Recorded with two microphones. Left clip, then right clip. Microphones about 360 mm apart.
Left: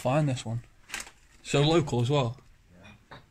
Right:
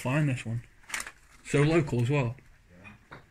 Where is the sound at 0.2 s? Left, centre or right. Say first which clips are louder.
Left 1 dB; left.